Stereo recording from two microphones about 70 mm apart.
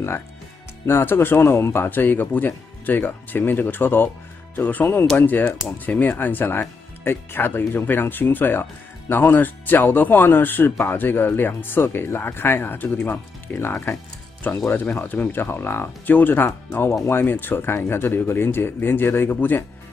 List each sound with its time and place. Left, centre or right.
0.8 s speech: left